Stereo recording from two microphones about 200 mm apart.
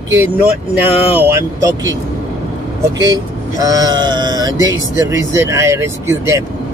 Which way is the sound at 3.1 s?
15° right (ahead or behind).